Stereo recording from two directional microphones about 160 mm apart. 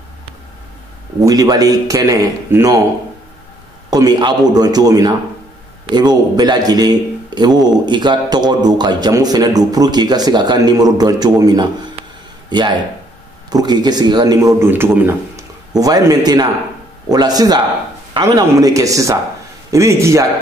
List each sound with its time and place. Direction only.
1.2 s speech: 25° right (ahead or behind)
3.9 s a man's voice: 25° right (ahead or behind)